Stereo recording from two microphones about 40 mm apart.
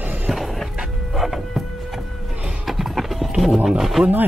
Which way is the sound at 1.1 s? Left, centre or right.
Centre.